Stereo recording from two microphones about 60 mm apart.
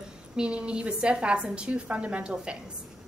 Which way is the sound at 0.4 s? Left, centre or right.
Centre.